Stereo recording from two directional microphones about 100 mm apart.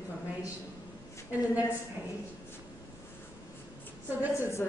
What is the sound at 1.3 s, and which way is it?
Speech, 15° right (ahead or behind).